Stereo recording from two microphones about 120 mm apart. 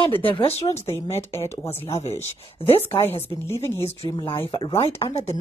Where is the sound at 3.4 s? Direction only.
20° left (ahead or behind).